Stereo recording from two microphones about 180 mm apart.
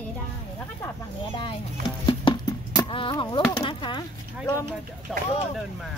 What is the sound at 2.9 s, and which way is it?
Speech, 30° left (ahead or behind).